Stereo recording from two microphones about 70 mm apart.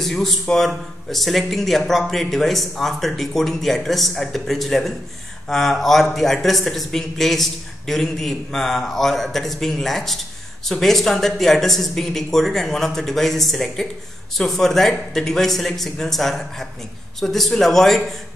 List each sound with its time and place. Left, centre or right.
0.0 s a man's voice: centre